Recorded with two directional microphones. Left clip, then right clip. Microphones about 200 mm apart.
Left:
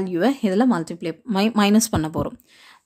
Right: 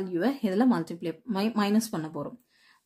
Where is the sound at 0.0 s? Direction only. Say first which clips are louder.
Left 7 dB; 30° left (ahead or behind).